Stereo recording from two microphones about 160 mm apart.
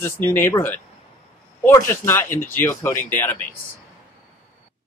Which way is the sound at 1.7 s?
15° left (ahead or behind).